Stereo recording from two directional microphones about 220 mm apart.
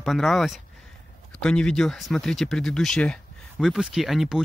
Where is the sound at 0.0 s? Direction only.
Centre (ahead or behind).